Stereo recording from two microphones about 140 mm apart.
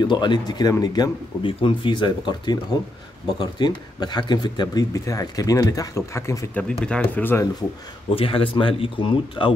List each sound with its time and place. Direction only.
0.0 s speech: 35° left (ahead or behind)
6.8 s speech: 10° left (ahead or behind)
8.1 s speech: 40° left (ahead or behind)